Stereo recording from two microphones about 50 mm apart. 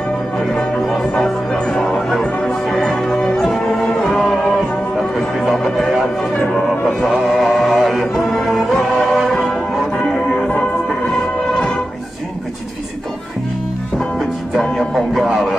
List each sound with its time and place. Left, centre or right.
0.6 s music: centre
6.4 s music: left
7.2 s music: centre
8.9 s music: centre
9.3 s music: centre